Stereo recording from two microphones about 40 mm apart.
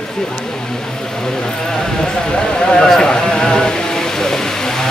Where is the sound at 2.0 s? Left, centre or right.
Left.